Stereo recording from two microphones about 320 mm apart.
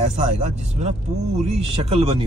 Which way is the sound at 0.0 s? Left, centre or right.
Right.